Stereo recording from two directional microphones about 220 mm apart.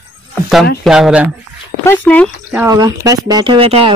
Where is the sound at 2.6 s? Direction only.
15° right (ahead or behind).